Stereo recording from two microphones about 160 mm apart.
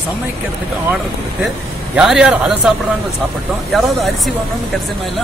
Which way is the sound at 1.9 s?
5° right (ahead or behind).